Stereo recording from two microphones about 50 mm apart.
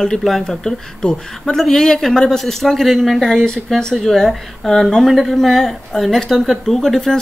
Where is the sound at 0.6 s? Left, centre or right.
Centre.